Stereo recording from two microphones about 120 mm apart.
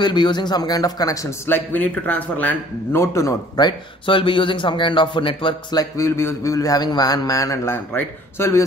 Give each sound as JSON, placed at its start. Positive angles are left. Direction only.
{"t": 0.0, "sound": "a man's voice", "side_deg": 40}
{"t": 1.7, "sound": "a man's voice", "side_deg": 15}
{"t": 5.8, "sound": "a man's voice", "side_deg": 25}